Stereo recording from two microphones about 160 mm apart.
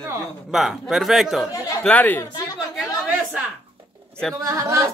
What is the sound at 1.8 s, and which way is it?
Speech, 10° left (ahead or behind).